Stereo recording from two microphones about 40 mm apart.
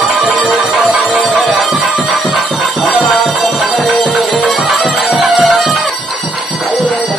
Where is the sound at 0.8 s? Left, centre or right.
Centre.